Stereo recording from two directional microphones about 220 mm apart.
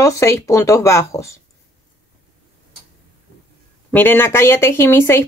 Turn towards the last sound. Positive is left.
turn(degrees=10)  # may be behind; listen again after turning